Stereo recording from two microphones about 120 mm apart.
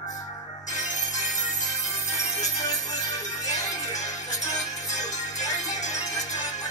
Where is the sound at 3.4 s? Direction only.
30° left (ahead or behind).